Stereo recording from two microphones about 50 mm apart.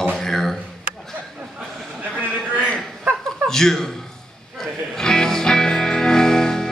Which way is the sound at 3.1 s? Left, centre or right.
Right.